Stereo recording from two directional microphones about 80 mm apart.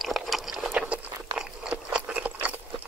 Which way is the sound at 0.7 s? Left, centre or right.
Centre.